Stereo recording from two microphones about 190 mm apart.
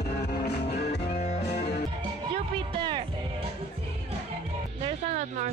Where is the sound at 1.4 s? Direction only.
60° left (ahead or behind).